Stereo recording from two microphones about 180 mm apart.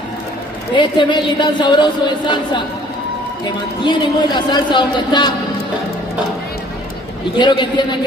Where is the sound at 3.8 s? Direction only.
25° left (ahead or behind).